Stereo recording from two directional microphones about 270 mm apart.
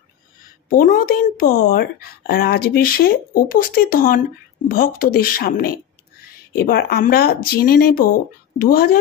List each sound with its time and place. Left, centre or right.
0.7 s speech: left